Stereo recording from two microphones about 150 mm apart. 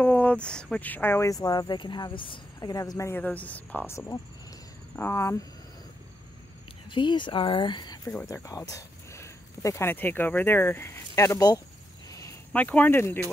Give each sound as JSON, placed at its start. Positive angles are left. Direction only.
{"t": 0.0, "sound": "speech", "side_deg": 10}
{"t": 6.9, "sound": "speech", "side_deg": 30}
{"t": 12.5, "sound": "speech", "side_deg": 10}